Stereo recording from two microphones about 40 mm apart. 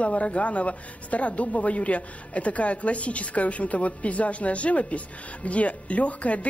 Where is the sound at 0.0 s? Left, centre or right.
Left.